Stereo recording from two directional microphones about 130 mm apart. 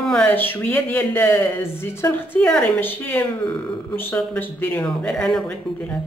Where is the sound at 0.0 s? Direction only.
10° left (ahead or behind).